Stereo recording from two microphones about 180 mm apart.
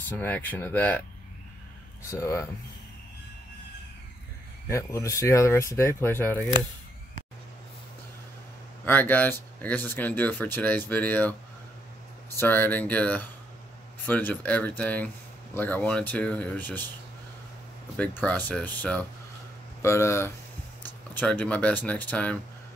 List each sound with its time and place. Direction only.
0.1 s speech: 10° left (ahead or behind)
2.0 s speech: 15° left (ahead or behind)
4.6 s speech: 15° left (ahead or behind)
8.8 s speech: 10° left (ahead or behind)
12.4 s speech: 10° left (ahead or behind)
17.9 s speech: 5° left (ahead or behind)